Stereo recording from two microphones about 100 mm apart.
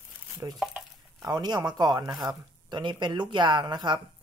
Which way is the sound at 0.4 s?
40° right (ahead or behind).